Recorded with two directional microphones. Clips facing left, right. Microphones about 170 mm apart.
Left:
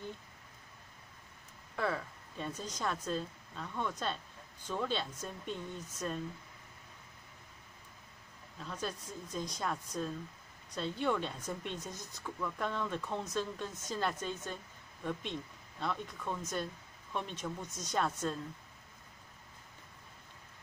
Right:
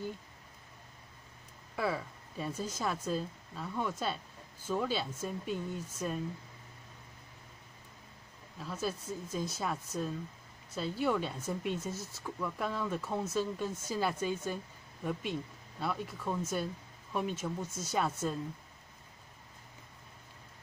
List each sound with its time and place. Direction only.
1.8 s speech: 5° right (ahead or behind)
8.5 s speech: 5° right (ahead or behind)
15.8 s speech: 5° right (ahead or behind)